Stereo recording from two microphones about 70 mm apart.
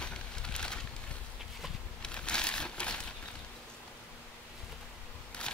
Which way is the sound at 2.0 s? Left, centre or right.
Centre.